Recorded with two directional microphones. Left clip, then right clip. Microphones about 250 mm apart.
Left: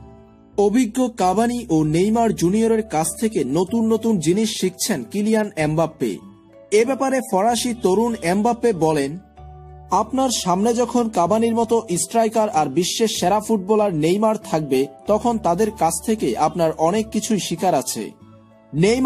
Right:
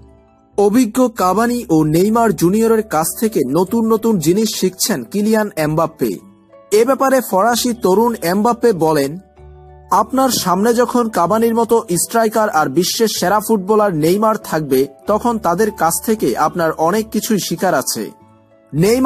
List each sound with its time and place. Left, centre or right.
0.6 s speech: centre
6.7 s speech: centre